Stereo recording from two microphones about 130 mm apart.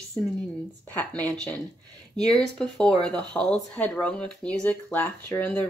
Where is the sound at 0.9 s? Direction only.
5° left (ahead or behind).